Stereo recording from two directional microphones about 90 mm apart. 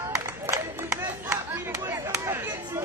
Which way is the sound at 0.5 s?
40° right (ahead or behind).